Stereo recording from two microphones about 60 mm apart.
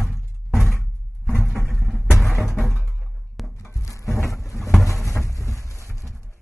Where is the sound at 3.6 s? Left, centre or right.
Left.